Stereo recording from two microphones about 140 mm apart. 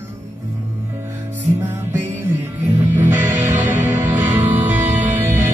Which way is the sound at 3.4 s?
65° right (ahead or behind).